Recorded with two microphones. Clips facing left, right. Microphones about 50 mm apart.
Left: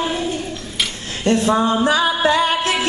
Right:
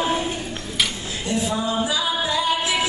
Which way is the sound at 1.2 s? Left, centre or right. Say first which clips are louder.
Left 8 dB; left.